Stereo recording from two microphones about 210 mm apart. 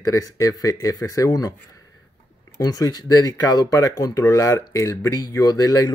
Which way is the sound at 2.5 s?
15° left (ahead or behind).